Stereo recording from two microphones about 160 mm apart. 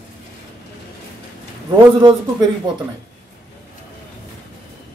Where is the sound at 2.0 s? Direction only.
30° right (ahead or behind).